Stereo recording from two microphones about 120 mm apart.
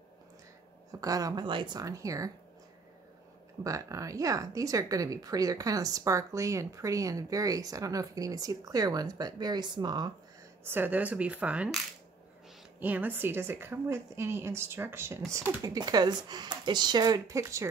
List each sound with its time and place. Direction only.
1.0 s speech: 30° right (ahead or behind)
1.4 s speech: 45° right (ahead or behind); by 2.3 s 30° right (ahead or behind)
3.6 s speech: 25° right (ahead or behind)
10.6 s speech: 15° right (ahead or behind)
12.8 s speech: 15° right (ahead or behind)